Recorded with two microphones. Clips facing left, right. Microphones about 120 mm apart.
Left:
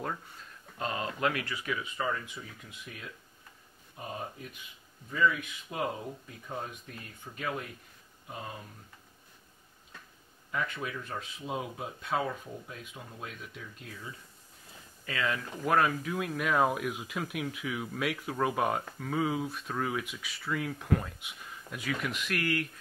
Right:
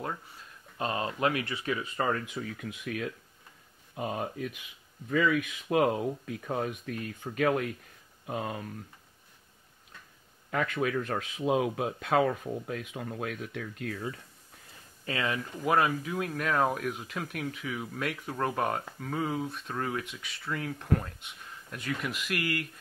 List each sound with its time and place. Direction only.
0.7 s speech: 20° right (ahead or behind)
2.0 s speech: 55° right (ahead or behind)
10.5 s speech: 75° right (ahead or behind)
15.0 s speech: 20° right (ahead or behind)
15.6 s speech: 5° right (ahead or behind)